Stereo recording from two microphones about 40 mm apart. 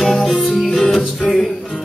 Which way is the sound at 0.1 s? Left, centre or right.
Centre.